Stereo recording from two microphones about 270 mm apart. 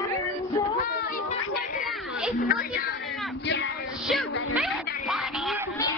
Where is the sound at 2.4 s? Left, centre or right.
Left.